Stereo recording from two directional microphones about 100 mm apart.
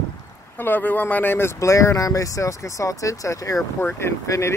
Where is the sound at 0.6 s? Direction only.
20° left (ahead or behind).